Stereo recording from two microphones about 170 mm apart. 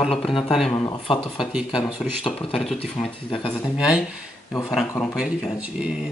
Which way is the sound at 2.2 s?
30° left (ahead or behind).